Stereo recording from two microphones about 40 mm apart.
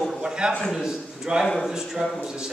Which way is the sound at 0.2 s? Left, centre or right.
Right.